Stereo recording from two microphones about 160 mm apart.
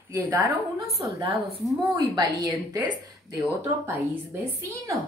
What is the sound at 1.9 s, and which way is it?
A woman's voice, 25° right (ahead or behind).